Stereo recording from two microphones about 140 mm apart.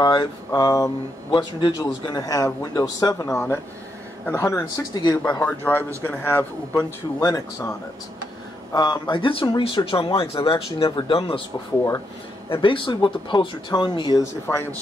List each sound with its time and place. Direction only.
0.0 s speech: 30° left (ahead or behind)
5.4 s a man's voice: 15° left (ahead or behind)
7.2 s speech: 25° left (ahead or behind)
8.7 s speech: 30° left (ahead or behind)
12.4 s speech: 35° left (ahead or behind)
14.2 s speech: 20° left (ahead or behind)